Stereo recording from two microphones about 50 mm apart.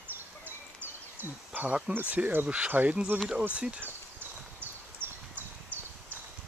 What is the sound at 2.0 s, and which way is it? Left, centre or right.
Speech, right.